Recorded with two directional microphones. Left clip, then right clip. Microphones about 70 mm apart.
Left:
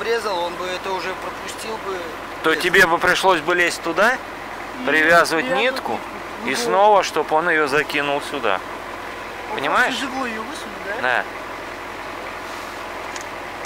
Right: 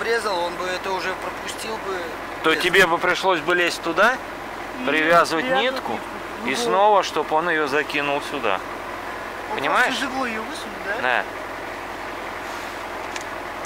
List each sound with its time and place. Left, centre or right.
0.0 s a sound: centre
2.4 s speech: centre
3.0 s speech: left
3.4 s speech: centre
9.6 s speech: centre
11.0 s speech: centre